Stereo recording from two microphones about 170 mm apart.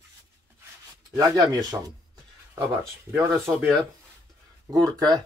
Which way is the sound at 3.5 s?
10° right (ahead or behind).